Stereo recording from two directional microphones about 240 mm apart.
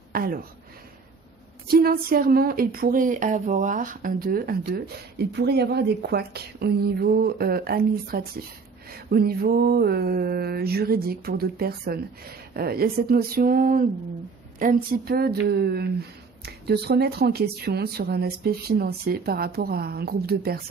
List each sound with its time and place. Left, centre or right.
0.1 s speech: right
1.7 s speech: right